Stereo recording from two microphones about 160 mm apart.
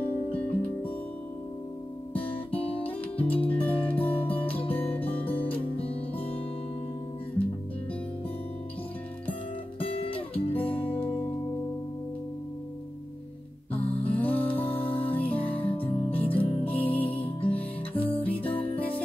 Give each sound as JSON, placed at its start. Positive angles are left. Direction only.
{"t": 2.8, "sound": "music", "side_deg": 10}
{"t": 4.3, "sound": "music", "side_deg": 35}
{"t": 4.7, "sound": "music", "side_deg": 10}
{"t": 9.8, "sound": "music", "side_deg": 35}
{"t": 10.5, "sound": "music", "side_deg": 10}
{"t": 13.7, "sound": "music", "side_deg": 10}
{"t": 14.9, "sound": "music", "side_deg": 35}
{"t": 17.9, "sound": "music", "side_deg": 10}
{"t": 18.3, "sound": "music", "side_deg": 35}